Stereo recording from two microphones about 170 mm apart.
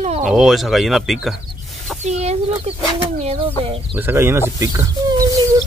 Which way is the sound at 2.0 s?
40° right (ahead or behind).